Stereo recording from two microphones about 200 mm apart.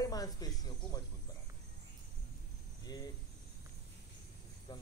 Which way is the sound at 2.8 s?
20° left (ahead or behind).